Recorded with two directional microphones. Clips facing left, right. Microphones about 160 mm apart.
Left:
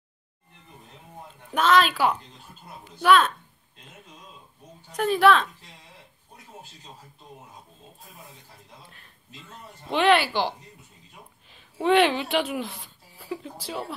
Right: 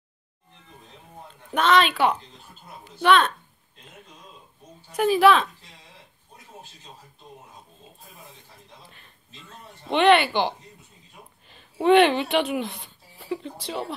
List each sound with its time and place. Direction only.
1.5 s a woman's voice: centre (ahead or behind)
4.9 s a woman's voice: 5° right (ahead or behind)
8.8 s a sound: centre (ahead or behind)
9.8 s a woman's voice: centre (ahead or behind)